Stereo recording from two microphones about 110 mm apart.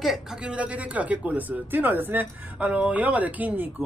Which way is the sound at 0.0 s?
5° right (ahead or behind).